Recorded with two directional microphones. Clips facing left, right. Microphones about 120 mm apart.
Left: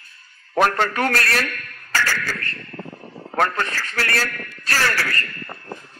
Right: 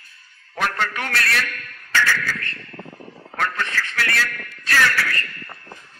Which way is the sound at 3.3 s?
40° left (ahead or behind).